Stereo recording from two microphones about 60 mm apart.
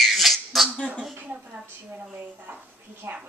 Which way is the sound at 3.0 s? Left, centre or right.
Right.